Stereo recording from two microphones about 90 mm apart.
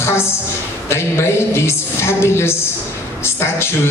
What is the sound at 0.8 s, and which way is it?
Music, 30° left (ahead or behind).